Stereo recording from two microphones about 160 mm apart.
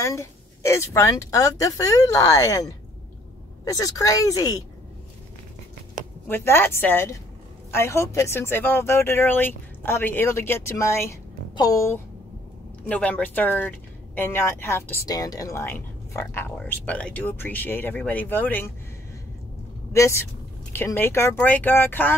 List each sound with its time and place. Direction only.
0.0 s speech: 20° left (ahead or behind)
6.2 s speech: 15° left (ahead or behind)
12.8 s speech: 10° left (ahead or behind)
19.9 s speech: 15° left (ahead or behind)